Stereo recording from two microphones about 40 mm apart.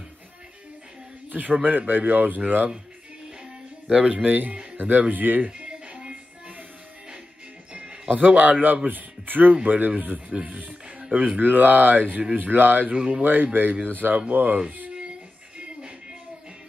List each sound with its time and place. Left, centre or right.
1.3 s speech: right
4.1 s speech: right
5.6 s music: right
7.7 s speech: right
12.9 s speech: right
13.2 s speech: right